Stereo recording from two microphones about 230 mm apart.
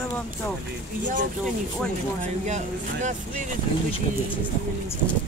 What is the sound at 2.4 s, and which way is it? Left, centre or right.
Speech, right.